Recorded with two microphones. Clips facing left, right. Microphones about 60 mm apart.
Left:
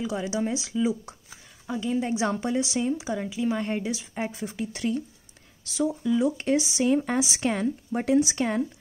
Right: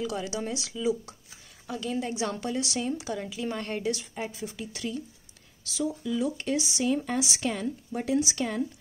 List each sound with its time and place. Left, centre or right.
0.0 s a woman's voice: centre
4.1 s speech: left